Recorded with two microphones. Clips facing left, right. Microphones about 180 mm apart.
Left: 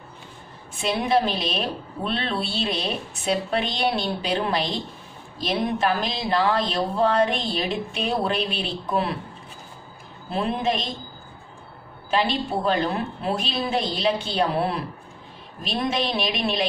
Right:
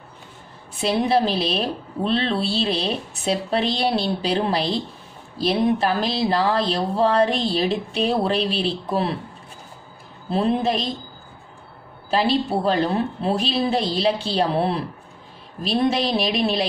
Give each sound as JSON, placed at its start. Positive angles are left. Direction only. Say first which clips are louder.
{"t": 0.7, "sound": "a woman's voice", "louder": "right 2 dB", "side_deg": -35}
{"t": 10.3, "sound": "a woman's voice", "louder": "right 4 dB", "side_deg": -35}
{"t": 12.1, "sound": "a woman's voice", "louder": "right 3 dB", "side_deg": -35}